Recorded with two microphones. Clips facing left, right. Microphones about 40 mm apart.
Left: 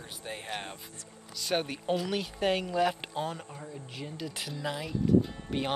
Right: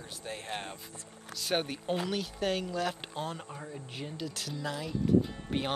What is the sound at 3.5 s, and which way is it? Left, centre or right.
Speech, centre.